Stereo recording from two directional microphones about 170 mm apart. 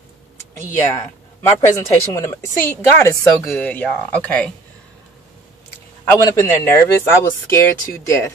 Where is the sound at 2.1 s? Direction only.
15° left (ahead or behind).